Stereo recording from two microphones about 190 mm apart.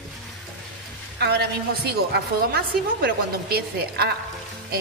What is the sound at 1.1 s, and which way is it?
A woman's voice, 60° right (ahead or behind).